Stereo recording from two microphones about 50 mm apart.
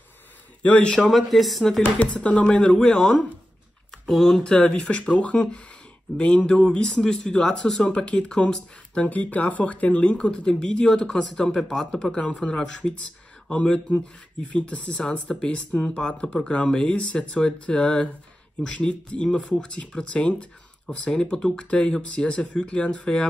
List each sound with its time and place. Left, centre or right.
0.6 s a man's voice: left
0.9 s speech: centre
1.8 s speech: left; by 21.5 s centre
21.5 s speech: left